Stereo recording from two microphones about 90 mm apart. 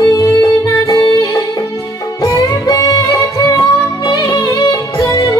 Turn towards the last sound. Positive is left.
turn(degrees=40)  # may be behind; listen again after turning